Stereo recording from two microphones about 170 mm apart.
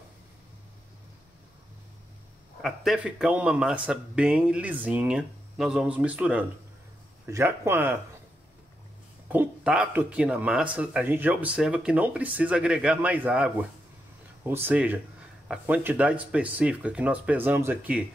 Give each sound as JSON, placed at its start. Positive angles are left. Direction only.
{"t": 2.6, "sound": "speech", "side_deg": 0}
{"t": 9.3, "sound": "speech", "side_deg": -5}